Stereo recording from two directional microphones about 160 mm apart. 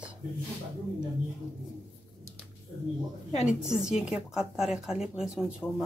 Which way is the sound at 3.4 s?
5° right (ahead or behind).